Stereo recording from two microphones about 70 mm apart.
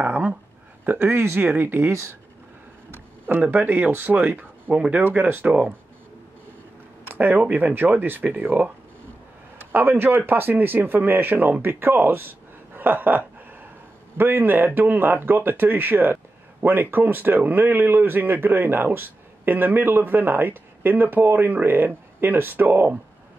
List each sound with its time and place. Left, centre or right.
0.0 s speech: right
3.3 s speech: right
4.7 s speech: centre
5.0 s speech: right
7.1 s speech: right
9.7 s speech: right